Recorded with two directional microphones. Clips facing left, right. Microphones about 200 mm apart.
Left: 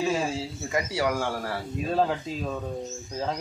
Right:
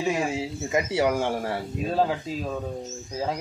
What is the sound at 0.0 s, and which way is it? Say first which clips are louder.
A man's voice: right 1 dB; 15° right (ahead or behind).